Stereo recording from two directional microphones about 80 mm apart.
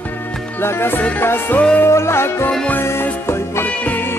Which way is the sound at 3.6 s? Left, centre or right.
Left.